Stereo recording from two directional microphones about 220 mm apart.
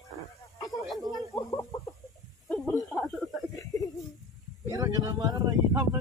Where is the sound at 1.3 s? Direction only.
15° left (ahead or behind).